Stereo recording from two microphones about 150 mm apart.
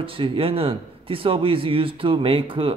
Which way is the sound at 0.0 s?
35° right (ahead or behind).